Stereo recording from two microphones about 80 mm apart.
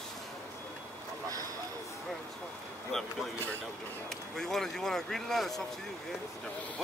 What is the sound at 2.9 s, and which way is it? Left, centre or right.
Speech, centre.